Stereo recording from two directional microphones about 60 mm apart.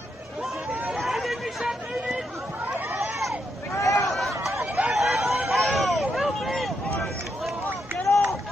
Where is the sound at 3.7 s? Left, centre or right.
Left.